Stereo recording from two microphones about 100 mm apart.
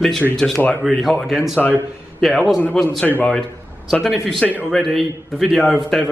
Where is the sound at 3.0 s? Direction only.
20° left (ahead or behind).